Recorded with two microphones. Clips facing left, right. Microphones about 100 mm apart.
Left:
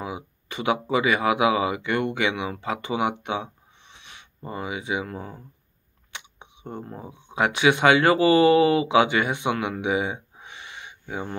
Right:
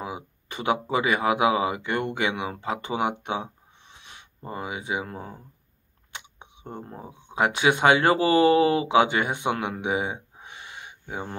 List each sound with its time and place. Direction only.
0.0 s speech: 45° right (ahead or behind)
6.1 s a sound: 45° right (ahead or behind)
7.3 s speech: 45° right (ahead or behind)
10.4 s owl: 45° right (ahead or behind)